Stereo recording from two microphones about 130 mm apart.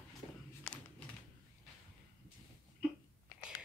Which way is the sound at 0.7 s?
5° left (ahead or behind).